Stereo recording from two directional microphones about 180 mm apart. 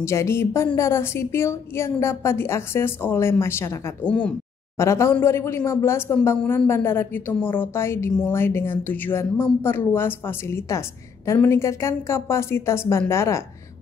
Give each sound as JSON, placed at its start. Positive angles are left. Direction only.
{"t": 0.0, "sound": "a woman's voice", "side_deg": 15}